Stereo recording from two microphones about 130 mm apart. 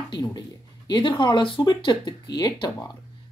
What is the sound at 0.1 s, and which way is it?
Speech, 30° left (ahead or behind).